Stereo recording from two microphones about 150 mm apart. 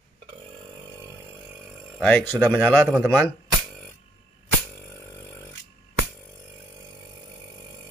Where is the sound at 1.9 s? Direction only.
10° left (ahead or behind).